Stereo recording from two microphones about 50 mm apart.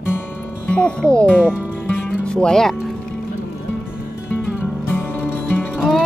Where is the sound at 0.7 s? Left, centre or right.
Centre.